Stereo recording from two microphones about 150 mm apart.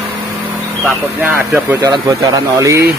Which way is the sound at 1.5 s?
15° right (ahead or behind).